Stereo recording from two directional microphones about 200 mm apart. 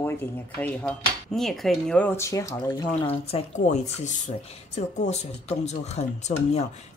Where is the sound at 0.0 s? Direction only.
10° left (ahead or behind).